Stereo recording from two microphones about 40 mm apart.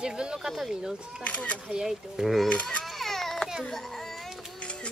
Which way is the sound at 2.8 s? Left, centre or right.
Centre.